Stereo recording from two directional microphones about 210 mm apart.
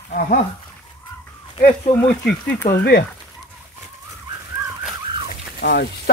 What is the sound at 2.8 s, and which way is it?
Speech, 50° left (ahead or behind).